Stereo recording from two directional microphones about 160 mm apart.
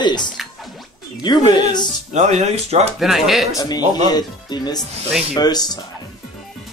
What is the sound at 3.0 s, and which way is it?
Speech, centre (ahead or behind).